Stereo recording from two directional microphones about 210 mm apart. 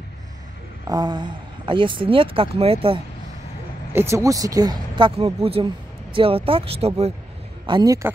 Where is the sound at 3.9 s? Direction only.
15° right (ahead or behind); by 7.1 s 30° right (ahead or behind).